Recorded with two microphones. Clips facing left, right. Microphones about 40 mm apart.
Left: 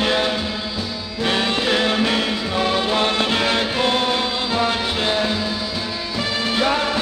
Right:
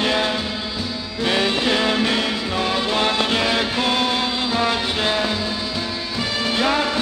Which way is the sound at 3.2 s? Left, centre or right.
Centre.